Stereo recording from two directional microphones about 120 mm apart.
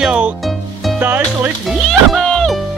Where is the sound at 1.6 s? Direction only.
Centre (ahead or behind).